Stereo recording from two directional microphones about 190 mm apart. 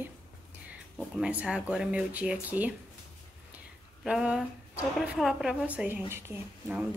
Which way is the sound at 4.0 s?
5° right (ahead or behind).